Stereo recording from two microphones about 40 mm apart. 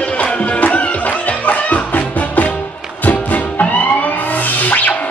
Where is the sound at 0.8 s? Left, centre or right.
Left.